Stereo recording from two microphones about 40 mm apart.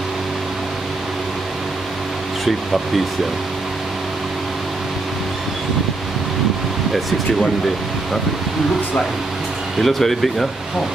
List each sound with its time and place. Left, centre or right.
9.8 s speech: centre